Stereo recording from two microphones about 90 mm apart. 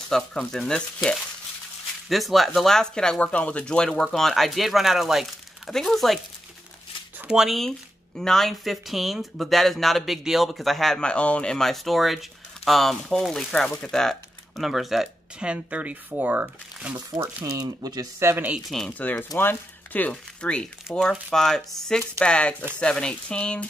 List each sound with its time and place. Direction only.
0.1 s speech: 5° left (ahead or behind)
2.0 s speech: centre (ahead or behind)
7.2 s speech: 10° right (ahead or behind)
17.2 s speech: 40° right (ahead or behind)
18.2 s speech: 30° right (ahead or behind)
18.7 s speech: 5° left (ahead or behind)
18.9 s speech: 20° left (ahead or behind)